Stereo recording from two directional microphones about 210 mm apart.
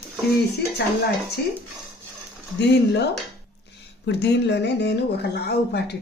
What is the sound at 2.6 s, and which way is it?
Speech, 55° left (ahead or behind).